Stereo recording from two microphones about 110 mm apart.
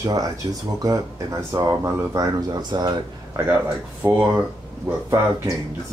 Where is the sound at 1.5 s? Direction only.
30° right (ahead or behind).